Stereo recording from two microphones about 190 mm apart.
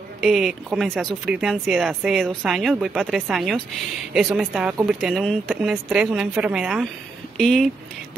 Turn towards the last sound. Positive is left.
turn(degrees=0)  # may be behind; listen again after turning